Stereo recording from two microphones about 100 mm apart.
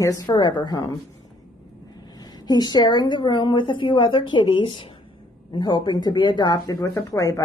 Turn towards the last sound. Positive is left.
turn(degrees=35)  # may be behind; listen again after turning